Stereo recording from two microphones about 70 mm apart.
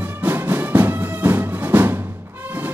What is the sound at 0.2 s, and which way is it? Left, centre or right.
Music, right.